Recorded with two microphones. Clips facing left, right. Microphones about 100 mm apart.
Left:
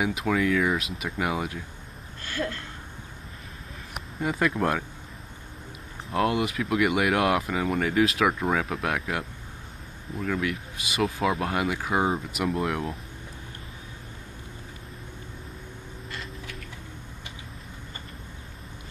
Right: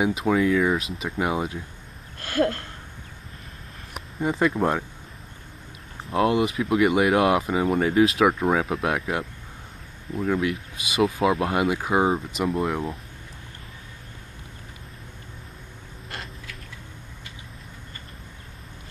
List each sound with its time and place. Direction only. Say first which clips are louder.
0.0 s speech: right 4 dB; 5° right (ahead or behind)
2.2 s a sound: right 8 dB; 60° right (ahead or behind)
4.2 s speech: right 3 dB; centre (ahead or behind)
6.0 s speech: right 4 dB; centre (ahead or behind)
10.2 s speech: right 4 dB; 10° right (ahead or behind)
10.5 s speech: right 3 dB; centre (ahead or behind)